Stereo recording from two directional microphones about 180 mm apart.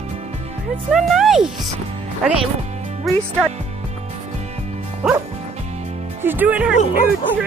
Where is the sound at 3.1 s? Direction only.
Centre (ahead or behind).